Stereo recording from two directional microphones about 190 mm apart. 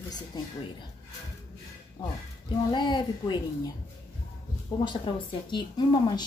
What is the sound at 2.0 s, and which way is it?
A woman's voice, 20° left (ahead or behind).